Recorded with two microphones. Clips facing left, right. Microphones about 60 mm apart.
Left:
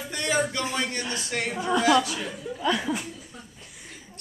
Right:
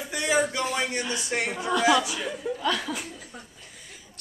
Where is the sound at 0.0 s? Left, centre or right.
Centre.